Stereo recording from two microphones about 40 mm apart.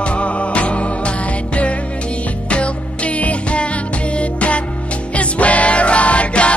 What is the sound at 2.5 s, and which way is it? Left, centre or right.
Music, left.